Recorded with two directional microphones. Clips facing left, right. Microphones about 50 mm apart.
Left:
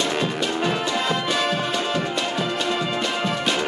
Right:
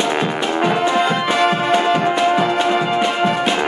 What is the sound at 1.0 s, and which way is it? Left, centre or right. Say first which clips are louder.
Music: right 7 dB; right.